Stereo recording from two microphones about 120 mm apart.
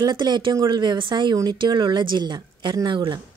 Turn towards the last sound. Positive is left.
turn(degrees=-40)  # may be behind; listen again after turning